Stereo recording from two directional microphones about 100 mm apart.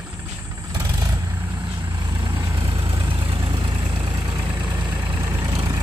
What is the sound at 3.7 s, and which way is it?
Vehicle, 45° right (ahead or behind).